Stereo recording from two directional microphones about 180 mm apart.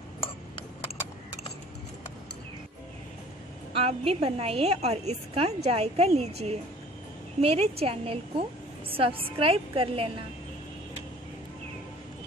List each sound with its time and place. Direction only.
3.7 s a woman's voice: 35° right (ahead or behind)